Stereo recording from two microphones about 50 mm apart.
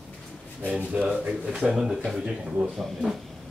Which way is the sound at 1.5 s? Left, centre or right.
Centre.